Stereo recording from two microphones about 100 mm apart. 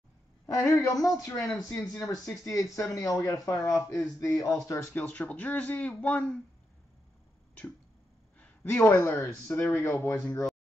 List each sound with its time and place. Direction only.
0.5 s speech: 30° left (ahead or behind); by 6.3 s 15° left (ahead or behind)
8.8 s speech: 25° left (ahead or behind)